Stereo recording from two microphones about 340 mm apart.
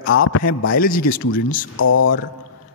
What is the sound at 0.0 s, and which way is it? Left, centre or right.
Speech, left.